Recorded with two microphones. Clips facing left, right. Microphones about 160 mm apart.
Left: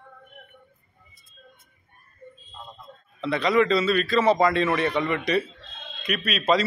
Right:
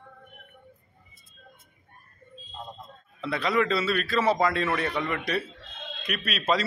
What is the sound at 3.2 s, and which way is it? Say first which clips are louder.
A man's voice: left 5 dB; 5° right (ahead or behind).